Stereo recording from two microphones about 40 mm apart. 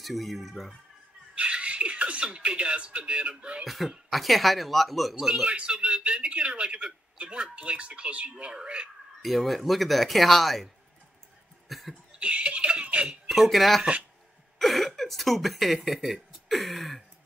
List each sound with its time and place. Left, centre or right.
0.0 s speech: centre
1.3 s speech: right
3.6 s speech: centre
5.2 s speech: centre
5.5 s a man's voice: right
9.2 s speech: centre
11.7 s cough: centre
12.2 s chuckle: right
13.3 s speech: centre